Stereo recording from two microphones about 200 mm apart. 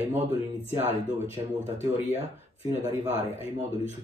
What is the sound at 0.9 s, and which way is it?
Speech, 30° left (ahead or behind).